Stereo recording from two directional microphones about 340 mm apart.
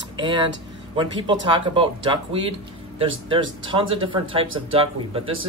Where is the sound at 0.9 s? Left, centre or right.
Centre.